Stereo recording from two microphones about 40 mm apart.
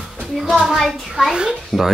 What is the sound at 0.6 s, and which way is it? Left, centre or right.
Child singing, centre.